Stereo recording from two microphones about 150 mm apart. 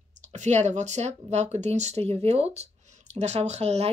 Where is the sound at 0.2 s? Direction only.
50° right (ahead or behind).